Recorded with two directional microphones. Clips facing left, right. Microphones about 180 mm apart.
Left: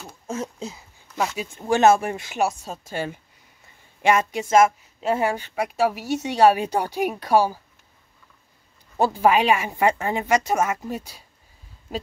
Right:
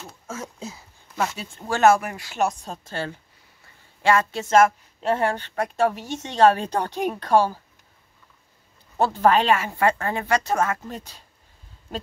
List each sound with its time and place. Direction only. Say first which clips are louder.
0.3 s speech: left 5 dB; 25° left (ahead or behind)
1.1 s speech: left 1 dB; 10° left (ahead or behind)
2.3 s a woman's voice: right 2 dB; 5° left (ahead or behind)
8.9 s a woman's voice: even; 10° left (ahead or behind)